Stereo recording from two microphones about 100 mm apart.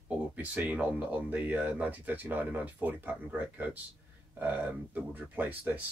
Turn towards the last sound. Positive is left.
turn(degrees=-15)  # may be behind; listen again after turning